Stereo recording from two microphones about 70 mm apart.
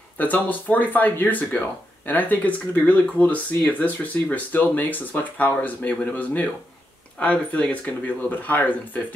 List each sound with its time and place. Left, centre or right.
0.2 s speech: left